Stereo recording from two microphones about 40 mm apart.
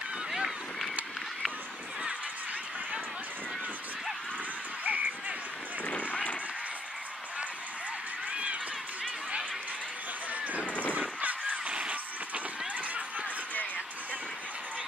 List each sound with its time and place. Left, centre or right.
4.8 s a sound: right
5.9 s run: left
10.3 s vehicle: right
11.0 s honk: right